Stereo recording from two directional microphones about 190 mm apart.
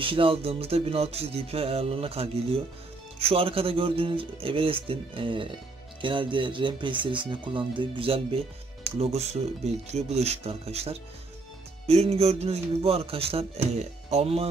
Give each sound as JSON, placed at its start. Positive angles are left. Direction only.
{"t": 0.0, "sound": "music", "side_deg": -25}
{"t": 3.2, "sound": "speech", "side_deg": -30}
{"t": 9.0, "sound": "music", "side_deg": -35}